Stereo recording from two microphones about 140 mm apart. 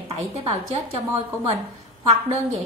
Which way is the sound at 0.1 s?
50° right (ahead or behind).